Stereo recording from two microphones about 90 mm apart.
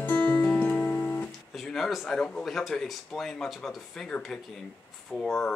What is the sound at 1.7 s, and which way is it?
Speech, centre (ahead or behind).